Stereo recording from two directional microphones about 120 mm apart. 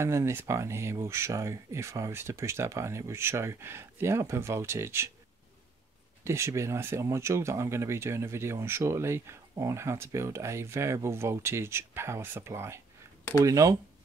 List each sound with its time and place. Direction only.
0.0 s speech: 20° right (ahead or behind)
6.2 s speech: 25° right (ahead or behind)